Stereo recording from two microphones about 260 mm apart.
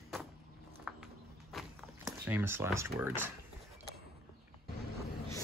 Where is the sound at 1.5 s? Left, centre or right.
Centre.